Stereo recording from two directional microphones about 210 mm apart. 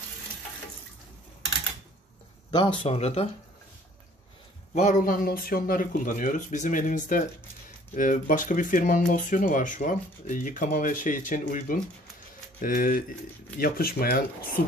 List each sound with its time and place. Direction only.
2.5 s speech: 25° left (ahead or behind)
4.7 s speech: 40° left (ahead or behind)